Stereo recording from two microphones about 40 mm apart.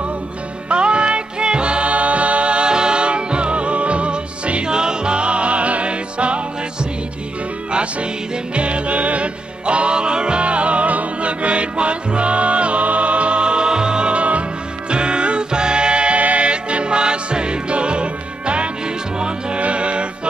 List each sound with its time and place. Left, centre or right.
0.7 s music: right